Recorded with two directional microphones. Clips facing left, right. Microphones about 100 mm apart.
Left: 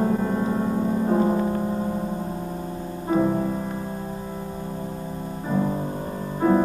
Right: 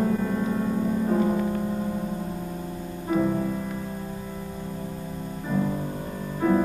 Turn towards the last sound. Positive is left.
turn(degrees=35)  # may be behind; listen again after turning